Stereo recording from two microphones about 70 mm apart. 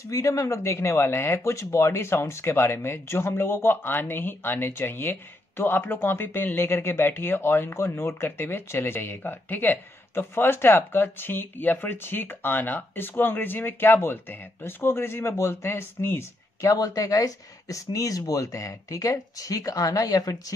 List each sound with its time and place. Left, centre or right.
0.1 s speech: left
16.7 s speech: left